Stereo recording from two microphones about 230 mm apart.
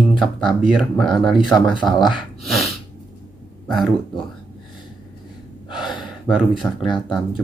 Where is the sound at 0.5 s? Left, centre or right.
Centre.